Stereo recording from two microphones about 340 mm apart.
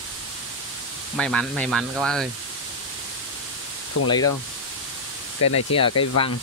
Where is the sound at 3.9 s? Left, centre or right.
Left.